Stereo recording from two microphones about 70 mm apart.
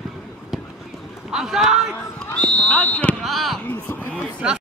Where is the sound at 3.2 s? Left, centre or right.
Centre.